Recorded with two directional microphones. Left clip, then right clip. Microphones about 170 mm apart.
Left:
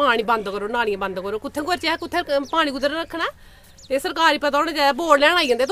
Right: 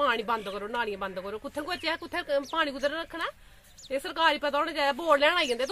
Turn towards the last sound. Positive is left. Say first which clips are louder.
# left 8 dB
turn(degrees=25)  # may be behind; listen again after turning